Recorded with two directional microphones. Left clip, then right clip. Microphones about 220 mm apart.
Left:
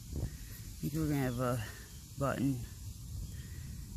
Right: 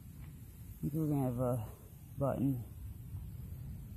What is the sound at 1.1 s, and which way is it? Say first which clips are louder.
Speech: left 1 dB; 15° left (ahead or behind).